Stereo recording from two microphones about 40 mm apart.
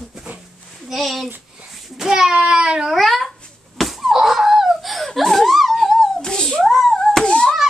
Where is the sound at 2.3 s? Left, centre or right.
Right.